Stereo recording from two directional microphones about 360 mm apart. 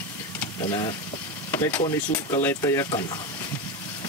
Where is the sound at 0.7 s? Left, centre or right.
Centre.